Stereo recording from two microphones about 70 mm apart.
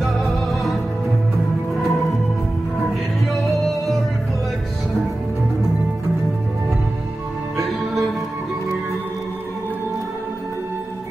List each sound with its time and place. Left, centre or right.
0.0 s music: centre
1.8 s music: centre
3.3 s music: centre